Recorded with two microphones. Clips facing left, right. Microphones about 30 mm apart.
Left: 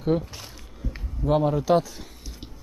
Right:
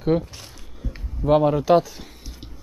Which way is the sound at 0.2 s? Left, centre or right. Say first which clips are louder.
Right 1 dB; centre.